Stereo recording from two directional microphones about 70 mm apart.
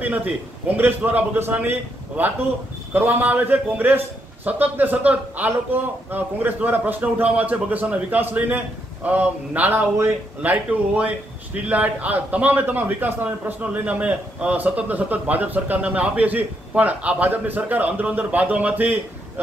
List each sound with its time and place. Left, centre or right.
0.0 s a man's voice: right